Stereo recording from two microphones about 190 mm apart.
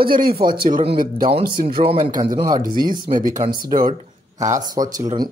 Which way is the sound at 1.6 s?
30° right (ahead or behind).